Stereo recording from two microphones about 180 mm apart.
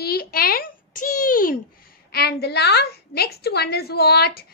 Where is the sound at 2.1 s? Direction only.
60° left (ahead or behind).